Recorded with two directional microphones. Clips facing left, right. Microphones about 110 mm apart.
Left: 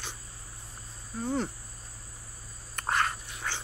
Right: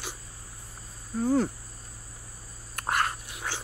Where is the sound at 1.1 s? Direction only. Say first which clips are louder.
Right 6 dB; 5° right (ahead or behind).